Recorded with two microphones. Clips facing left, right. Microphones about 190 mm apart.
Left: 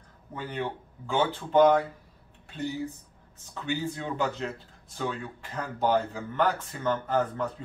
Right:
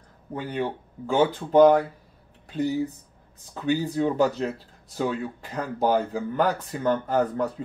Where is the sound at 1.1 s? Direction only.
40° right (ahead or behind).